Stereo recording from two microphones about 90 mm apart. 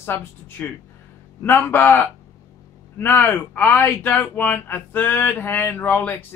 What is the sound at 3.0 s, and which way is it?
Speech, 25° left (ahead or behind).